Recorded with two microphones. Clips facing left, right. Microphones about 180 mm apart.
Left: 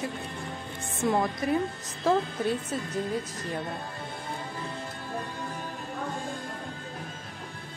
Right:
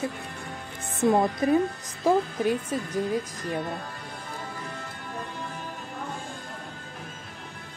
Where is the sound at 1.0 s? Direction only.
25° right (ahead or behind).